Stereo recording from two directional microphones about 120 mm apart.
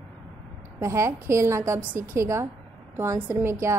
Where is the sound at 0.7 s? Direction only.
25° right (ahead or behind).